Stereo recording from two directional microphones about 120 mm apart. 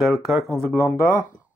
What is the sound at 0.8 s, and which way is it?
Speech, 25° left (ahead or behind).